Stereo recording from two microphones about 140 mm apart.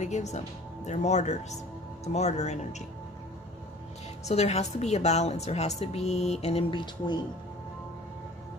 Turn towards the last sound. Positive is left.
turn(degrees=35)  # may be behind; listen again after turning